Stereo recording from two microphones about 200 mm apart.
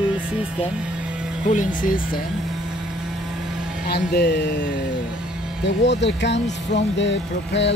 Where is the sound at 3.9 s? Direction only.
50° left (ahead or behind).